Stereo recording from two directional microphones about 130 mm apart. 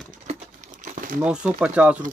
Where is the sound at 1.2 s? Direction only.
5° right (ahead or behind).